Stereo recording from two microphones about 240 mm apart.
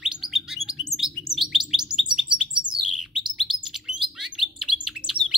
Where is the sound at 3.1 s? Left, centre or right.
Centre.